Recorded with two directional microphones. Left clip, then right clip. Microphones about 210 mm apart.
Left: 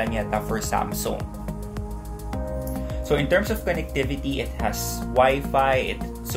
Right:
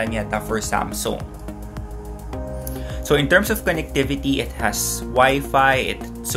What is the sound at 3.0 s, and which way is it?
Speech, 25° right (ahead or behind).